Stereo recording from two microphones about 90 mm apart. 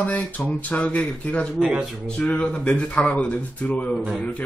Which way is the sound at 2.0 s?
10° left (ahead or behind).